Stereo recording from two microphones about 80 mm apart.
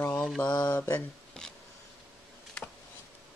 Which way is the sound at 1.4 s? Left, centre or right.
Centre.